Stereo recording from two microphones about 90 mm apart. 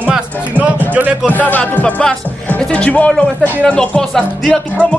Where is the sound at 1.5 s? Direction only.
15° left (ahead or behind).